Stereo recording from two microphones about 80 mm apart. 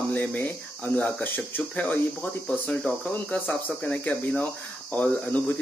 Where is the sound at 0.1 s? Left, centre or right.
Left.